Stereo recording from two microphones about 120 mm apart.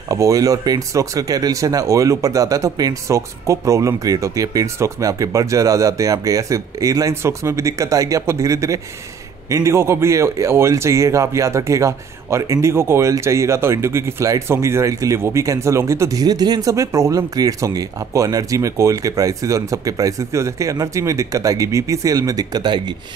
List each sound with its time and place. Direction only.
0.1 s speech: 30° right (ahead or behind)